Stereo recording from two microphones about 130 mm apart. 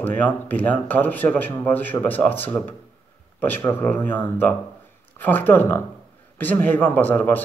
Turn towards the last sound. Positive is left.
turn(degrees=15)  # may be behind; listen again after turning